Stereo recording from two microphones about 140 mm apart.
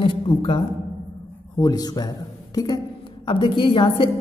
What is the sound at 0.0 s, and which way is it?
A woman's voice, 35° left (ahead or behind).